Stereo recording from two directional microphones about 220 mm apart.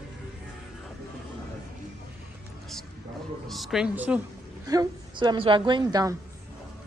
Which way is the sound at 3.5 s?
Centre (ahead or behind).